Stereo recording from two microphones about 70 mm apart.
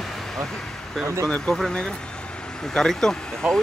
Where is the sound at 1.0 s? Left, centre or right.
Right.